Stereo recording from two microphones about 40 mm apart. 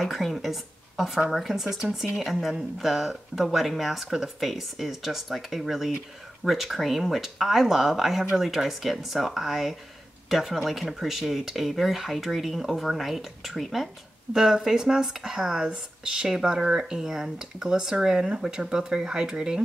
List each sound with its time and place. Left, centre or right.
0.0 s speech: centre
14.3 s speech: centre